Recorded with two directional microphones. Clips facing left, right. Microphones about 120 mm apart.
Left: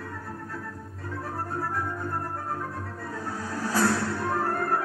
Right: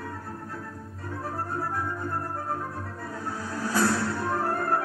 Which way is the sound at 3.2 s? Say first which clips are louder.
Even; 35° left (ahead or behind).